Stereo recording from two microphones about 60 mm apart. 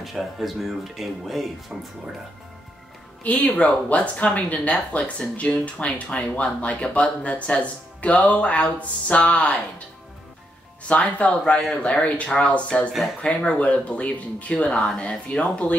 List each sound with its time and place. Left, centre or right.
0.0 s speech: centre
3.3 s speech: left
10.9 s speech: left